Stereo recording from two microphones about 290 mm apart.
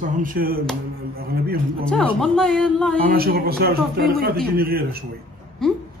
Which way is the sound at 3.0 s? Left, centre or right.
Right.